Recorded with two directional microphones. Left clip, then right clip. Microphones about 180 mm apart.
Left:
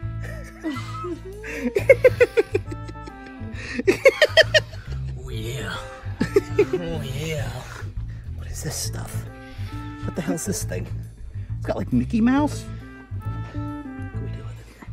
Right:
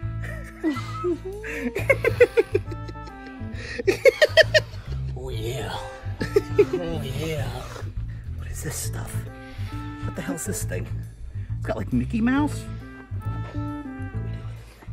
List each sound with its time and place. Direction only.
0.7 s speech: centre (ahead or behind)
1.4 s speech: 25° left (ahead or behind)
3.0 s music: centre (ahead or behind)
3.5 s music: 30° left (ahead or behind)
5.2 s music: centre (ahead or behind)
6.2 s music: 40° left (ahead or behind)
6.7 s music: centre (ahead or behind)
8.5 s speech: 20° left (ahead or behind)
9.8 s music: centre (ahead or behind)
10.1 s speech: 30° left (ahead or behind)
13.3 s music: centre (ahead or behind)